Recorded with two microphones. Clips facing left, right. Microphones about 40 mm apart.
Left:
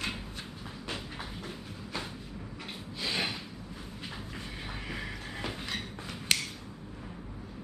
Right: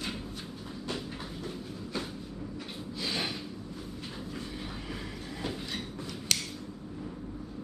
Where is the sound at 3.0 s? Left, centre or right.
Centre.